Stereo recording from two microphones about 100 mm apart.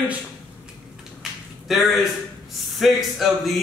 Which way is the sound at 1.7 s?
Centre (ahead or behind).